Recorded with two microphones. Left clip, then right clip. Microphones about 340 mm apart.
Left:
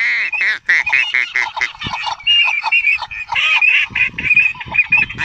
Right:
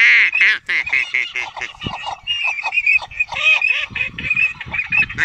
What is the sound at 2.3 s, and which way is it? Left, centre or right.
Goose, left.